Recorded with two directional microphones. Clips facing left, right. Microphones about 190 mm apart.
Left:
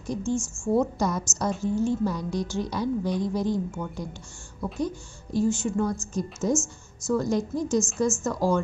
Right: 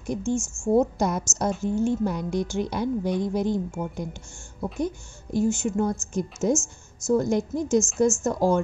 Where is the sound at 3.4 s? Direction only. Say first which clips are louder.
Right 1 dB; 20° right (ahead or behind).